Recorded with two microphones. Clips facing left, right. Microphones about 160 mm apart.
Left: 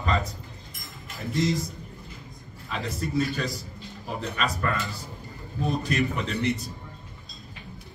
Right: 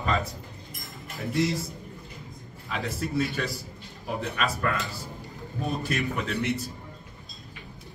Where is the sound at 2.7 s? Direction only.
5° right (ahead or behind).